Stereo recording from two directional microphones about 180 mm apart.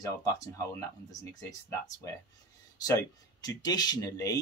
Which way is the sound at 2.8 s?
20° left (ahead or behind).